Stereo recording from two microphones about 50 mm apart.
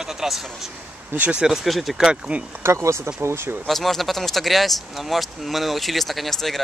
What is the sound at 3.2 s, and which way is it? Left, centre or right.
Speech, right.